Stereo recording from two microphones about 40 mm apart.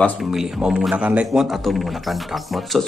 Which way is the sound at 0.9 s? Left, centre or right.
Right.